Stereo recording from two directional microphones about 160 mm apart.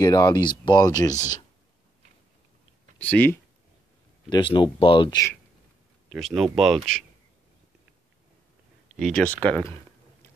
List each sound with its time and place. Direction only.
0.0 s speech: 25° left (ahead or behind)
3.0 s speech: 10° left (ahead or behind)
4.3 s speech: 30° left (ahead or behind)
6.0 s speech: centre (ahead or behind)
9.0 s speech: 5° left (ahead or behind)